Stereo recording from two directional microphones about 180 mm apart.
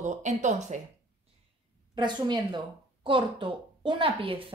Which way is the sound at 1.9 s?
25° right (ahead or behind).